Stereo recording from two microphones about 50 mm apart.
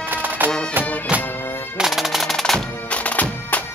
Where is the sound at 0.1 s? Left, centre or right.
Right.